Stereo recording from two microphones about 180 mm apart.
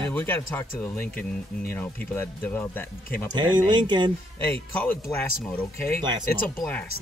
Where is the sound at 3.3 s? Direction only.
25° right (ahead or behind).